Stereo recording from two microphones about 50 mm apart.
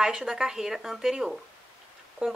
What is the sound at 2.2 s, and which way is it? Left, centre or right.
Speech, right.